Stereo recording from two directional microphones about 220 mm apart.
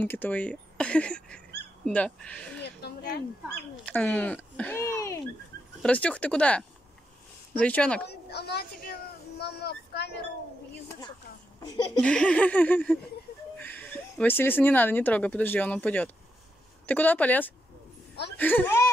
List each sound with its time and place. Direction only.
0.0 s speech: 10° left (ahead or behind)
2.6 s a sound: 50° left (ahead or behind)
3.8 s speech: 5° left (ahead or behind)
8.1 s a woman's voice: 50° left (ahead or behind)
11.6 s speech: 20° left (ahead or behind)
12.0 s speech: 5° left (ahead or behind)